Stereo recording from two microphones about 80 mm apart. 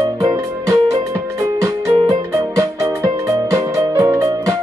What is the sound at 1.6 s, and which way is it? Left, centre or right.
Music, right.